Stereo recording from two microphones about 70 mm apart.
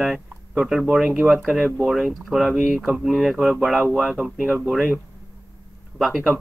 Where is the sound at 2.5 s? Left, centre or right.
Centre.